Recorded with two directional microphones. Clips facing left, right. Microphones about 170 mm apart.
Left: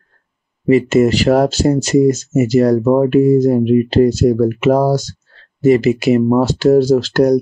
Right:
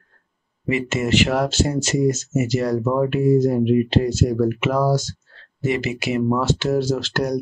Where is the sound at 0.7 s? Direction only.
35° left (ahead or behind).